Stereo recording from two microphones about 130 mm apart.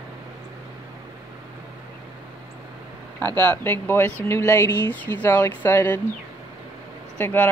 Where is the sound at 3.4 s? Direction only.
15° left (ahead or behind).